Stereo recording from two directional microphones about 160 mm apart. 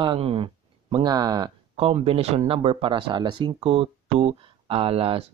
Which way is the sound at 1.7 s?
40° right (ahead or behind).